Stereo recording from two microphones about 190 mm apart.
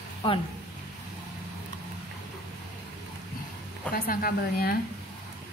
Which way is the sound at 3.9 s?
50° left (ahead or behind).